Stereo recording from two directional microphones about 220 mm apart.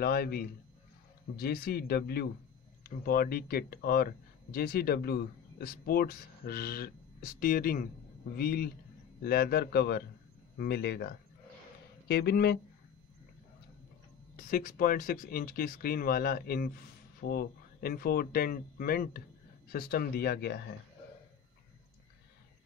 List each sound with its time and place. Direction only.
0.0 s speech: 45° left (ahead or behind)
14.3 s speech: 40° left (ahead or behind)